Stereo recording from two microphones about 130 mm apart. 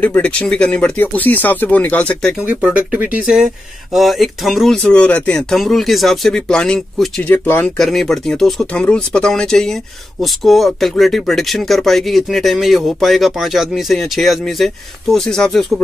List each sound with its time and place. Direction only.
0.0 s speech: 10° left (ahead or behind)
2.4 s speech: 10° right (ahead or behind); by 7.1 s 5° left (ahead or behind)
7.2 s speech: 15° left (ahead or behind)
7.6 s speech: 5° left (ahead or behind)